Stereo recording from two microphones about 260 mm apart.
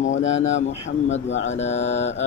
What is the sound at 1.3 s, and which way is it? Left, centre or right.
Speech, left.